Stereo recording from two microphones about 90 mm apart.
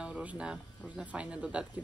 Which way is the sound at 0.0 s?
15° right (ahead or behind).